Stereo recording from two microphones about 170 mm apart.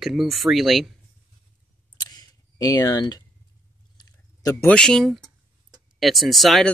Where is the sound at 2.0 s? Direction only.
25° left (ahead or behind).